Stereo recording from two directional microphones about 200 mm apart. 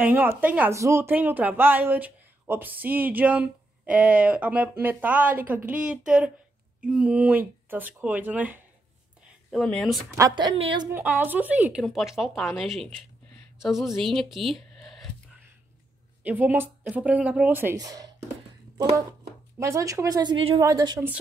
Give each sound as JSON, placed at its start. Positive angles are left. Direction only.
{"t": 0.0, "sound": "a woman's voice", "side_deg": -10}
{"t": 9.5, "sound": "speech", "side_deg": 5}
{"t": 10.1, "sound": "a woman's voice", "side_deg": -20}
{"t": 10.9, "sound": "speech", "side_deg": -10}
{"t": 16.3, "sound": "a woman's voice", "side_deg": -10}